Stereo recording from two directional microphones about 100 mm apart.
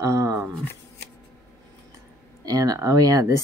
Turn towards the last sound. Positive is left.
turn(degrees=-35)  # may be behind; listen again after turning